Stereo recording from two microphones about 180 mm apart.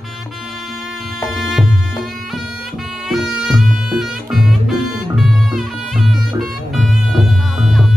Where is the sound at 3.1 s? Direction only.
Centre (ahead or behind).